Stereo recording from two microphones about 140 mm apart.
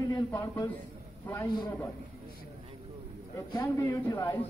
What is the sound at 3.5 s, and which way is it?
Speech, 15° left (ahead or behind).